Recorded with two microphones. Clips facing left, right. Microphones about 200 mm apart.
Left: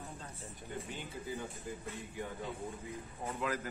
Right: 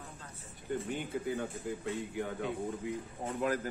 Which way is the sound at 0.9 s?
60° right (ahead or behind).